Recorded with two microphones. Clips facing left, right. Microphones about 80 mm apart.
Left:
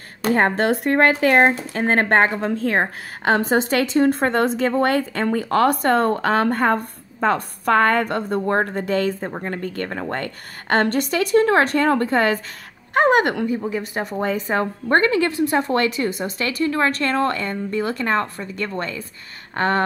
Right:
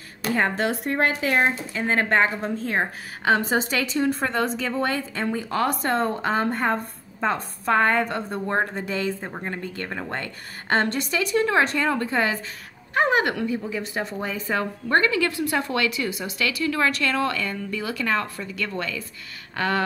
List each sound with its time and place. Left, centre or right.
0.2 s a woman's voice: left
2.8 s a woman's voice: left
19.5 s a sound: left